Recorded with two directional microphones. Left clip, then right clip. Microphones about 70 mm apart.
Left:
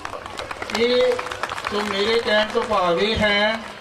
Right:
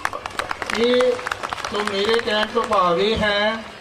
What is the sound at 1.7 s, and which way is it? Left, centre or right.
Speech, left.